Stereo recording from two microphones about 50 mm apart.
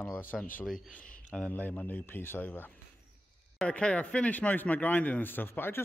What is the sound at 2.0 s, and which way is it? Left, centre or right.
Speech, left.